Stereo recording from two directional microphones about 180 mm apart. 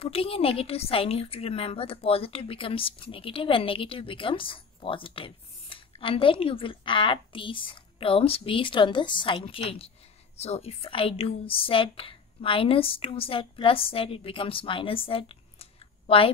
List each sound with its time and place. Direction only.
0.0 s a woman's voice: 30° left (ahead or behind)